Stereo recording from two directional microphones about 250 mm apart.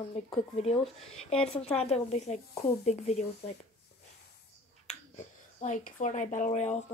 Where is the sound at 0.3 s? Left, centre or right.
Left.